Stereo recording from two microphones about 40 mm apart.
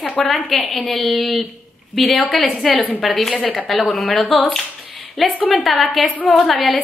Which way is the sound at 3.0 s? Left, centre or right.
Centre.